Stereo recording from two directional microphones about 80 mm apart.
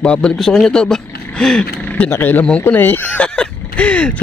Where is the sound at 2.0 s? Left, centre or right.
Left.